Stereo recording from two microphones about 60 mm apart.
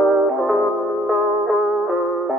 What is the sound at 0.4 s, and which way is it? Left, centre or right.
Music, centre.